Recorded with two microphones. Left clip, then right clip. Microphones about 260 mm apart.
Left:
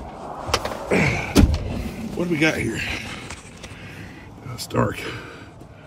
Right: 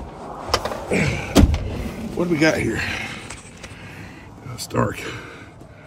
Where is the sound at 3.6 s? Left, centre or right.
Right.